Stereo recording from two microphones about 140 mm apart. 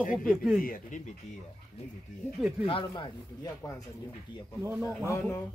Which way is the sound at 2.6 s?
40° left (ahead or behind).